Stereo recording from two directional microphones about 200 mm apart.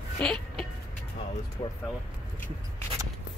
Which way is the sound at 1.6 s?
25° left (ahead or behind).